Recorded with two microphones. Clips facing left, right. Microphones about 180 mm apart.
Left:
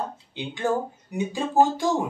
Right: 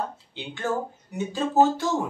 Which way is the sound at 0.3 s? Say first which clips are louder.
Left 5 dB; 15° left (ahead or behind).